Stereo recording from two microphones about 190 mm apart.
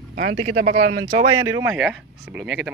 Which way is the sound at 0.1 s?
50° right (ahead or behind).